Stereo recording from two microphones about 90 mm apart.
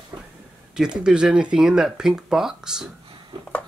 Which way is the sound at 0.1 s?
45° right (ahead or behind).